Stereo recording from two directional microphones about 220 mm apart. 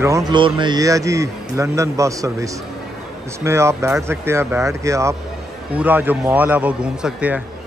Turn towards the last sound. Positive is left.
turn(degrees=-5)  # may be behind; listen again after turning